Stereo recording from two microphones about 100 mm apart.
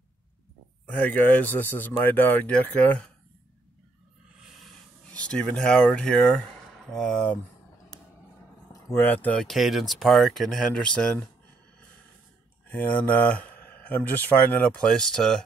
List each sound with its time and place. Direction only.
0.8 s speech: 15° left (ahead or behind)
4.4 s a sound: centre (ahead or behind)
5.1 s speech: 10° left (ahead or behind)
8.8 s speech: 20° left (ahead or behind)
9.5 s speech: centre (ahead or behind)
12.6 s speech: 20° left (ahead or behind)